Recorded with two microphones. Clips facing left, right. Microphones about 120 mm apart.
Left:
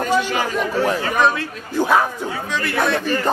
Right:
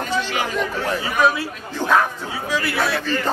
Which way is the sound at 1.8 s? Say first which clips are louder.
Left 2 dB; 10° left (ahead or behind).